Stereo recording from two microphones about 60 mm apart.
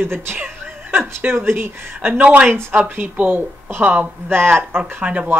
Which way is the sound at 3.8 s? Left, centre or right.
Right.